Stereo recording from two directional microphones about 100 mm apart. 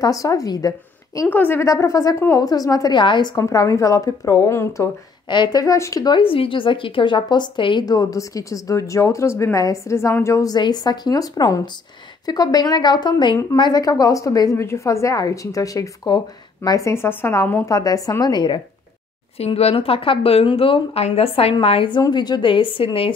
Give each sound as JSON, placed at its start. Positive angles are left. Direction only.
{"t": 0.0, "sound": "speech", "side_deg": 35}
{"t": 1.3, "sound": "speech", "side_deg": 20}
{"t": 1.7, "sound": "a woman's voice", "side_deg": 30}
{"t": 3.0, "sound": "a woman's voice", "side_deg": 50}
{"t": 3.4, "sound": "a woman's voice", "side_deg": 35}
{"t": 5.3, "sound": "a woman's voice", "side_deg": 45}
{"t": 6.0, "sound": "a woman's voice", "side_deg": 60}
{"t": 7.8, "sound": "a woman's voice", "side_deg": 40}
{"t": 17.6, "sound": "a woman's voice", "side_deg": 35}
{"t": 19.3, "sound": "speech", "side_deg": 90}
{"t": 22.1, "sound": "a woman's voice", "side_deg": 45}